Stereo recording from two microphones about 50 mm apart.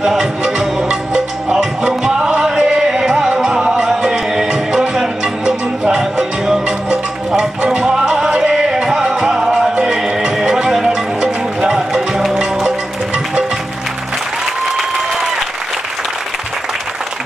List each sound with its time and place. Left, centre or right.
0.0 s music: centre
12.6 s music: centre
14.8 s applause: centre